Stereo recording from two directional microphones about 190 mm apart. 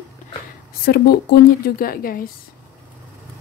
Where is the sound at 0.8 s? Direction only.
55° left (ahead or behind).